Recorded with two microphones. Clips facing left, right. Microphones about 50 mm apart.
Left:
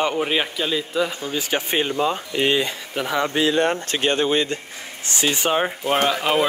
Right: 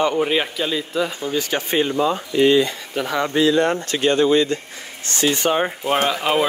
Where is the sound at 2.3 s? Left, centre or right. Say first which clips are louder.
Right 7 dB; left.